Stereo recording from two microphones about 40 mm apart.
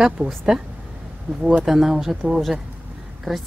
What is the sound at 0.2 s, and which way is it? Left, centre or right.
Speech, right.